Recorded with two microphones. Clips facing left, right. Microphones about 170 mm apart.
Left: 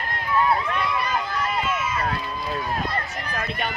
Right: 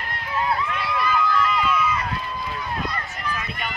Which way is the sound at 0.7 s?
45° left (ahead or behind).